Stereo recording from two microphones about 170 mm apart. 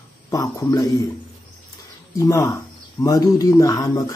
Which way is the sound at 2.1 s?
20° left (ahead or behind).